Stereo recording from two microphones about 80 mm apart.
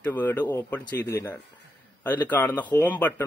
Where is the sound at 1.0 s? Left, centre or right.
Left.